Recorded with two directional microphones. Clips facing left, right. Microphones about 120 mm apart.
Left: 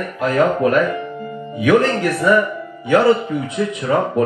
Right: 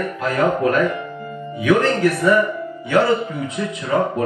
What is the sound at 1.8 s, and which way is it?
Speech, 15° left (ahead or behind).